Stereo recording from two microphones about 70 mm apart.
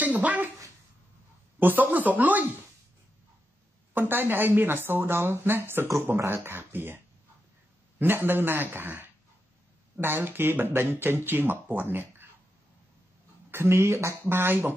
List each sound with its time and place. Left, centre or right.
0.0 s a sound: right
1.6 s speech: right
3.9 s speech: right
8.0 s speech: right
13.5 s speech: right